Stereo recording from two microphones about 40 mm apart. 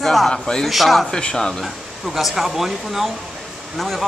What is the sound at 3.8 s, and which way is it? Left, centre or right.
Speech, centre.